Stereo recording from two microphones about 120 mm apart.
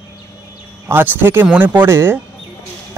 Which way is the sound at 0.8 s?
20° right (ahead or behind).